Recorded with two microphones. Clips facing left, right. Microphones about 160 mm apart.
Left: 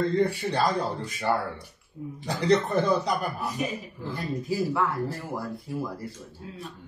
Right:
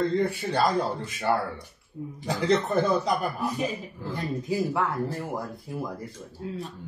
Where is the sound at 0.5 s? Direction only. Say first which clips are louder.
Right 1 dB; centre (ahead or behind).